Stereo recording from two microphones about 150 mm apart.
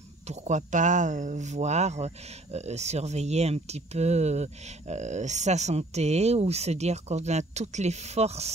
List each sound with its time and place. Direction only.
0.3 s speech: 55° right (ahead or behind)